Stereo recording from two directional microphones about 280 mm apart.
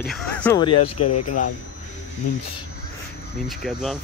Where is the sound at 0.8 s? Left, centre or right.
Left.